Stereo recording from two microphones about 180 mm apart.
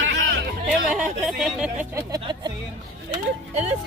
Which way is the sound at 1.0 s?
5° right (ahead or behind).